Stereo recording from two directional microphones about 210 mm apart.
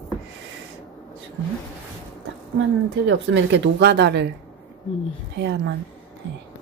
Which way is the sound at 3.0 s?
65° right (ahead or behind).